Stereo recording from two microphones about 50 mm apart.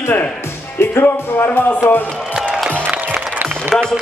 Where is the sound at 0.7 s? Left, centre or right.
Left.